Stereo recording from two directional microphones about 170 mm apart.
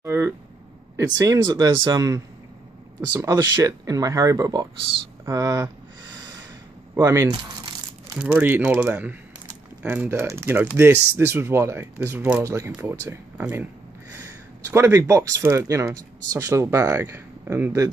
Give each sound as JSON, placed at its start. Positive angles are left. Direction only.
{"t": 0.0, "sound": "a sound", "side_deg": -15}
{"t": 0.9, "sound": "speech", "side_deg": -20}
{"t": 7.0, "sound": "speech", "side_deg": -20}
{"t": 8.1, "sound": "speech", "side_deg": -5}